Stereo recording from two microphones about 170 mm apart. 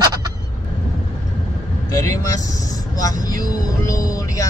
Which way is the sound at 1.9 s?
20° left (ahead or behind).